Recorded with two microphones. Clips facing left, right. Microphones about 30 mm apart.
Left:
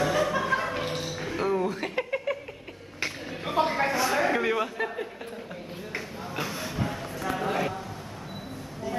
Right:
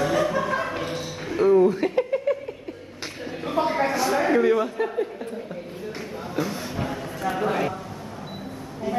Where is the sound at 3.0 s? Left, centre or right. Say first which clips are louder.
Even; centre.